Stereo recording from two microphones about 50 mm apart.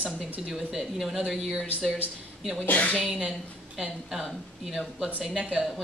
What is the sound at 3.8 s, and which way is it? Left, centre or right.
A man's voice, centre.